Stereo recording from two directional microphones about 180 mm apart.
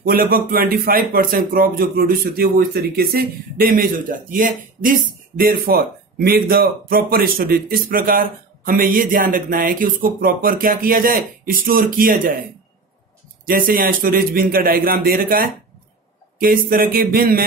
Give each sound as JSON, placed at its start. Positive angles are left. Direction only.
{"t": 0.0, "sound": "a man's voice", "side_deg": -55}
{"t": 13.5, "sound": "a man's voice", "side_deg": -50}